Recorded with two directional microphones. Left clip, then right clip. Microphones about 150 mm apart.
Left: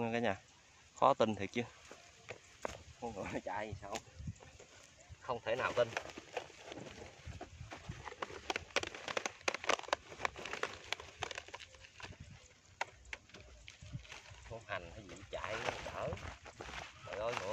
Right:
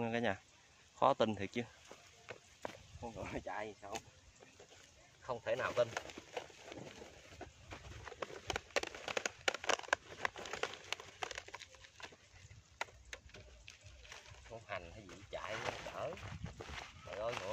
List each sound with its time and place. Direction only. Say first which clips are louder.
0.0 s speech: left 1 dB; 5° right (ahead or behind)
0.9 s a sound: left 2 dB; 5° right (ahead or behind)
2.6 s speech: left 4 dB; 40° left (ahead or behind)
5.2 s speech: left 1 dB; 10° left (ahead or behind)
6.3 s run: left 2 dB; 10° left (ahead or behind)
7.3 s a sound: left 2 dB; centre (ahead or behind)
15.6 s speech: left 2 dB; 5° left (ahead or behind)